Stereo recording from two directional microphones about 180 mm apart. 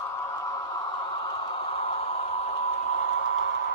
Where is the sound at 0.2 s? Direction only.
15° left (ahead or behind).